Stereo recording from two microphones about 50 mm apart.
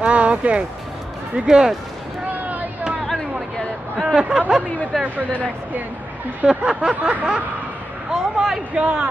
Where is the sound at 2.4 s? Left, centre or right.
Right.